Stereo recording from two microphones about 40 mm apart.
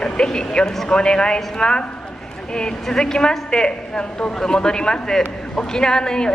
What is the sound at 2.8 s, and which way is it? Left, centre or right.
A woman's voice, centre.